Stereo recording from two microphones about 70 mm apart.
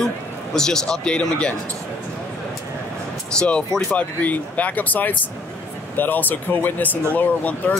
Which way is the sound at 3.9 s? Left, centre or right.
Left.